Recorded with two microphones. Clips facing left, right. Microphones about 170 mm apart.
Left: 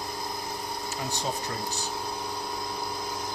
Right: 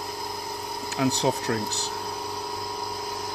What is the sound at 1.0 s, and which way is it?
Speech, 75° right (ahead or behind).